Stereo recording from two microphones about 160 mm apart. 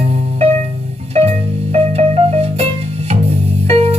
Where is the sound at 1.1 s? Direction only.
40° right (ahead or behind).